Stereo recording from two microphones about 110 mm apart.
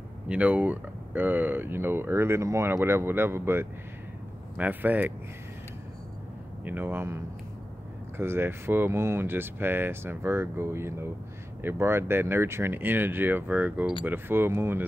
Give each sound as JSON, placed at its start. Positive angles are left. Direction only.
{"t": 0.3, "sound": "speech", "side_deg": -10}
{"t": 6.6, "sound": "speech", "side_deg": -15}
{"t": 8.2, "sound": "speech", "side_deg": -20}